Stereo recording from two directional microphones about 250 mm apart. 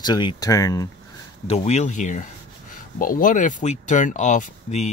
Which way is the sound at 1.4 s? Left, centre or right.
Left.